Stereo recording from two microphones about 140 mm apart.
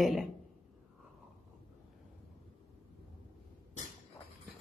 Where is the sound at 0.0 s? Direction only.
Centre (ahead or behind).